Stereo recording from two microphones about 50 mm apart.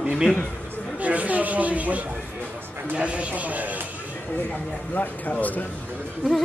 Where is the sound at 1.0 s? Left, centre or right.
Right.